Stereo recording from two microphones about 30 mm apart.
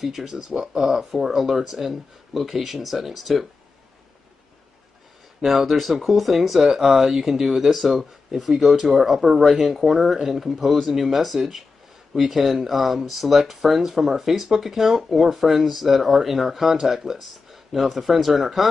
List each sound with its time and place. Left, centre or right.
0.0 s speech: centre
5.4 s speech: centre